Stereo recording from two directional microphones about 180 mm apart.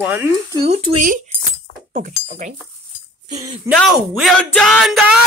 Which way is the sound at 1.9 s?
45° right (ahead or behind).